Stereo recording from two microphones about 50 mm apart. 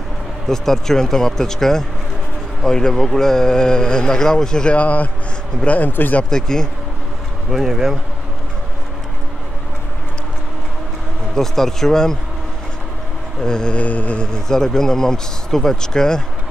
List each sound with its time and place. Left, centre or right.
0.5 s speech: centre
4.7 s speech: left
6.3 s speech: centre
7.5 s speech: centre
11.3 s speech: centre
13.4 s speech: centre
13.7 s mantra: left
14.2 s speech: centre